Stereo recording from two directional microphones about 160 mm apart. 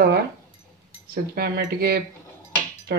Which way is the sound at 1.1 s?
70° right (ahead or behind).